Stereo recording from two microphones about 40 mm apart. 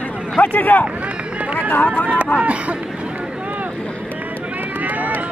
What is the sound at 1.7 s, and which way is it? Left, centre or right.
Speech, left.